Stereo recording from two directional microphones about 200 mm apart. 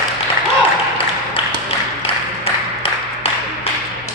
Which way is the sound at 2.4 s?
30° left (ahead or behind).